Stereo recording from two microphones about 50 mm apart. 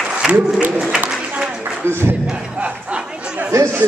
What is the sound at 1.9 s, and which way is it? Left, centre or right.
Speech, right.